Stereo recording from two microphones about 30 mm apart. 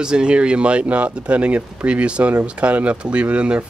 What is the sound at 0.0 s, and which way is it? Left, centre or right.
Speech, right.